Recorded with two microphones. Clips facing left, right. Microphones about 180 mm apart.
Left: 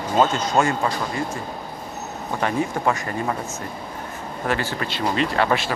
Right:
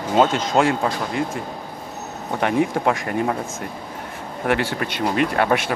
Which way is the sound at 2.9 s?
70° right (ahead or behind).